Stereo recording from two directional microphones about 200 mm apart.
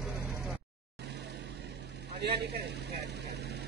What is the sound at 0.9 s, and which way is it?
Vehicle, 60° right (ahead or behind).